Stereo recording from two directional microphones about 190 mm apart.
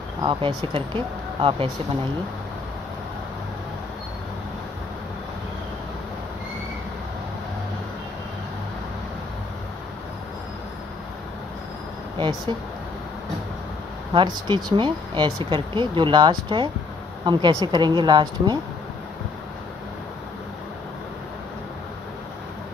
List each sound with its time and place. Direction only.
0.2 s speech: 25° right (ahead or behind)
14.1 s speech: 25° right (ahead or behind)